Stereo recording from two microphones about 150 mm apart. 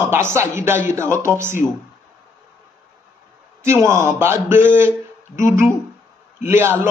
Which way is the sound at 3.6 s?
15° right (ahead or behind).